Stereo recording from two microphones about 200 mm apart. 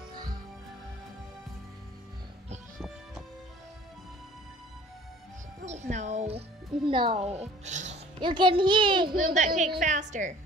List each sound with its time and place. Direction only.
0.1 s music: 20° right (ahead or behind)
5.7 s music: 35° right (ahead or behind)
6.9 s speech: 25° right (ahead or behind)
8.2 s speech: 25° right (ahead or behind)
9.1 s speech: 40° right (ahead or behind)